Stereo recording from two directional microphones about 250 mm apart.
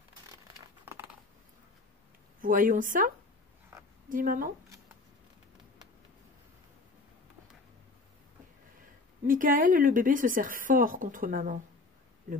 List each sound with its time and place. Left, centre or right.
2.4 s speech: right
4.1 s speech: right
9.3 s speech: right